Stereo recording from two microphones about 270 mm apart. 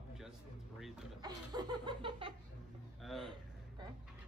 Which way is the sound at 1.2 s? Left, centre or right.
Centre.